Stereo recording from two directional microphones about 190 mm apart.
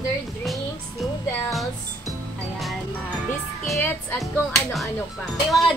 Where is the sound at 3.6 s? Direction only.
Centre (ahead or behind).